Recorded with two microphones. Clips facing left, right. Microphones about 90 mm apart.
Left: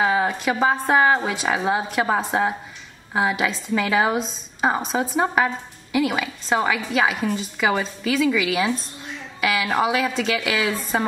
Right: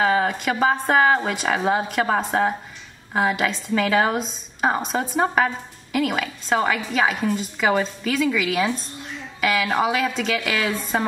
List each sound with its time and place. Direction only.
0.0 s a woman's voice: 5° left (ahead or behind)